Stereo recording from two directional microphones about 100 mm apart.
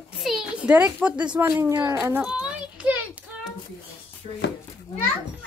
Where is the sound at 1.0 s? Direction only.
10° right (ahead or behind).